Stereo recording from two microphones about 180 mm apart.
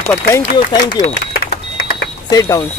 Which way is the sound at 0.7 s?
25° left (ahead or behind).